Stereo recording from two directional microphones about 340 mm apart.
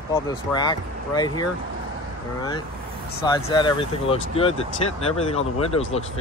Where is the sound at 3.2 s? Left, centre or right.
Centre.